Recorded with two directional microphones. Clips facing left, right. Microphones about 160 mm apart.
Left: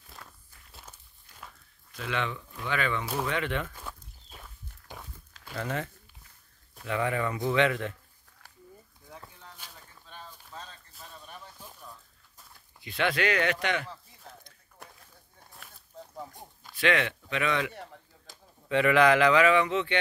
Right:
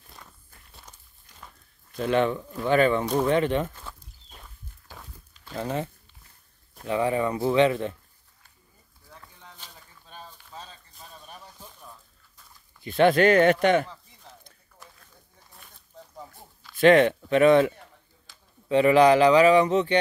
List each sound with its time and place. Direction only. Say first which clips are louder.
0.7 s walk: left 1 dB; 5° left (ahead or behind)
2.0 s speech: right 10 dB; 45° right (ahead or behind)
4.9 s walk: left 1 dB; 20° left (ahead or behind)
5.5 s speech: right 4 dB; 25° right (ahead or behind)
6.9 s speech: right 5 dB; 30° right (ahead or behind)
9.6 s a sound: right 1 dB; 10° left (ahead or behind)
10.0 s a sound: right 2 dB; 15° right (ahead or behind)
12.8 s speech: right 10 dB; 45° right (ahead or behind)
14.8 s a sound: left 2 dB; 60° left (ahead or behind)
16.7 s speech: right 10 dB; 45° right (ahead or behind)